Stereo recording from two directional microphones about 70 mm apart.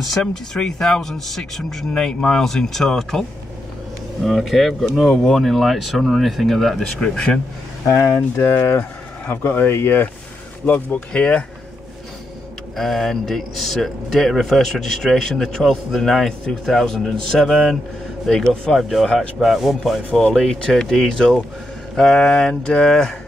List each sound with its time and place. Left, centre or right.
0.3 s speech: centre
9.3 s speech: left
10.6 s speech: centre
12.7 s speech: centre
20.1 s speech: centre